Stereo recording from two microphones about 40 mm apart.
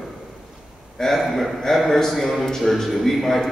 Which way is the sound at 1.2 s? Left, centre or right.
Centre.